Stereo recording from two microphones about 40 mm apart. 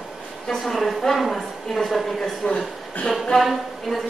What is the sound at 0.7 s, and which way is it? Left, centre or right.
A woman's voice, centre.